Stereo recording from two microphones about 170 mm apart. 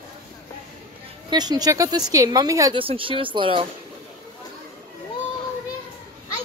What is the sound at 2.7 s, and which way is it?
Speech, 30° right (ahead or behind).